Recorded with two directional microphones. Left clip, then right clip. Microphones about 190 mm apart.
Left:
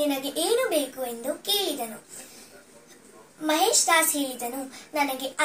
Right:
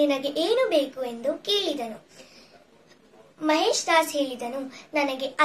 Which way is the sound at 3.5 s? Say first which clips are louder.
Even; 15° right (ahead or behind).